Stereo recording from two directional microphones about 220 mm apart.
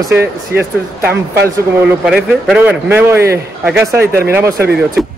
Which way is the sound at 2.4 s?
5° right (ahead or behind).